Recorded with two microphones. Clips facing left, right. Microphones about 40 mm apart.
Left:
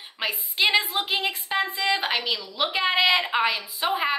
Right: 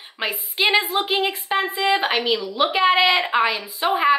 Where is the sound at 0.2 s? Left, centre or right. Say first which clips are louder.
Right 2 dB; centre.